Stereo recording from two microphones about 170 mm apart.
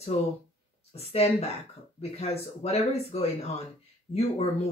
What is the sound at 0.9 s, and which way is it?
Speech, 35° left (ahead or behind).